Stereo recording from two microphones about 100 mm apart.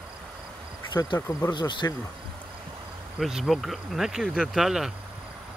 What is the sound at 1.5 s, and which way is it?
Speech, 50° left (ahead or behind).